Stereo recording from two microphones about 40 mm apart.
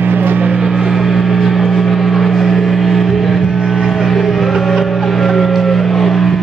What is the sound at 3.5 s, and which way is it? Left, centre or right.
Vehicle, centre.